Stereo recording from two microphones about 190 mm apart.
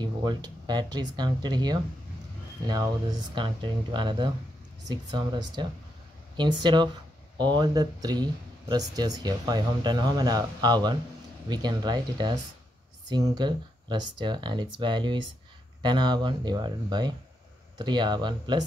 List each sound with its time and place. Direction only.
0.0 s speech: 20° right (ahead or behind)